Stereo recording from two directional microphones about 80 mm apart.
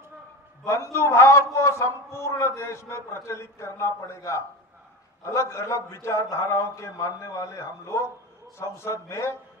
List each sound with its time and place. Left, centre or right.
0.7 s a man's voice: left